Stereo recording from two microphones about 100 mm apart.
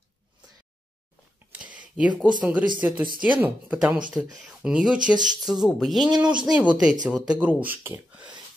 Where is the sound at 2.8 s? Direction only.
15° right (ahead or behind).